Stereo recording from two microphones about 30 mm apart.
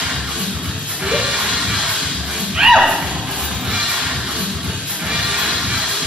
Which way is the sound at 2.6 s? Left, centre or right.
Centre.